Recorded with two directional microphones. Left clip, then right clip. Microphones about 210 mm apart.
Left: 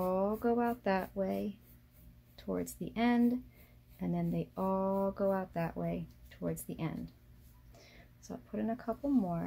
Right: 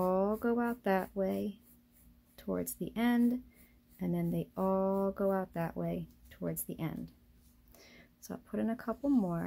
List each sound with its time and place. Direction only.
0.0 s speech: 15° right (ahead or behind)